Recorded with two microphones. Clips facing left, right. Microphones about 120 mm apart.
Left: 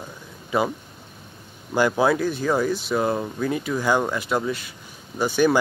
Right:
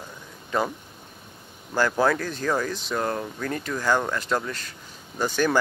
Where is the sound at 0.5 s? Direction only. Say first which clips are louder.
Left 3 dB; 10° left (ahead or behind).